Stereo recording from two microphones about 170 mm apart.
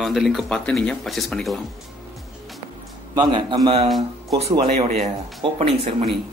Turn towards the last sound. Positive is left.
turn(degrees=-35)  # may be behind; listen again after turning